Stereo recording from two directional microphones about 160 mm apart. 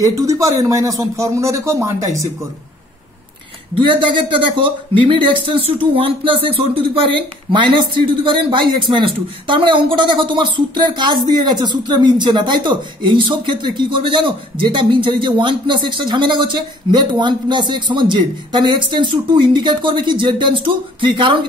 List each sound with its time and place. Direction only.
0.0 s speech: 20° right (ahead or behind)
3.7 s speech: 30° right (ahead or behind)